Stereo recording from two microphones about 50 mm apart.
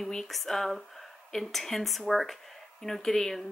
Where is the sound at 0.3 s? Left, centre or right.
Centre.